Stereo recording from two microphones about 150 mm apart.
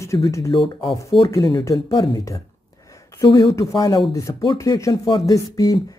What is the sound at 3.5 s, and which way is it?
Speech, 20° left (ahead or behind).